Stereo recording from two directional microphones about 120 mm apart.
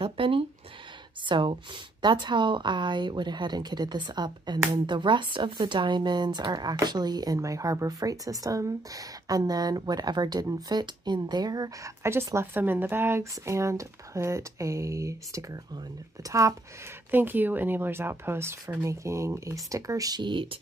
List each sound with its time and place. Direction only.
0.0 s a sound: 50° right (ahead or behind)
1.2 s speech: 40° right (ahead or behind)
17.1 s speech: 15° right (ahead or behind); by 20.5 s 40° right (ahead or behind)